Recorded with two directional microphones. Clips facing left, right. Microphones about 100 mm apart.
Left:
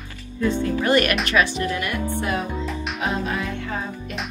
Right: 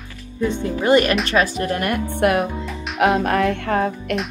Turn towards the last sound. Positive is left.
turn(degrees=-60)  # may be behind; listen again after turning